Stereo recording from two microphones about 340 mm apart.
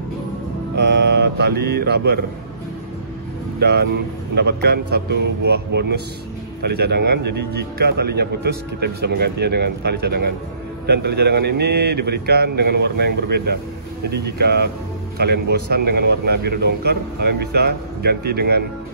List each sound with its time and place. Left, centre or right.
0.7 s mantra: right
3.5 s speech: right